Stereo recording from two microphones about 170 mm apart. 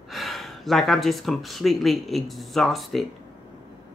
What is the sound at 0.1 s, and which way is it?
Speech, centre (ahead or behind).